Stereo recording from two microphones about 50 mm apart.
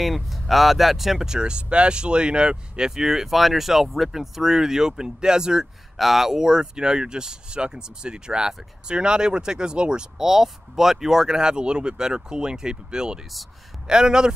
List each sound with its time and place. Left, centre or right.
0.0 s speech: centre